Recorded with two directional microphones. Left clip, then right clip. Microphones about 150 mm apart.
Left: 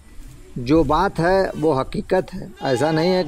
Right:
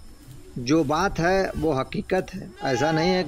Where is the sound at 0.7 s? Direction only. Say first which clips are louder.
Left 5 dB; 15° left (ahead or behind).